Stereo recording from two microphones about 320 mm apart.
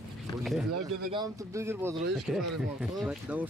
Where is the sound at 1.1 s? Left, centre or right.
Centre.